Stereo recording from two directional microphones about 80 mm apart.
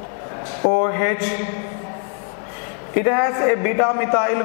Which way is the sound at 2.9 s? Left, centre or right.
Centre.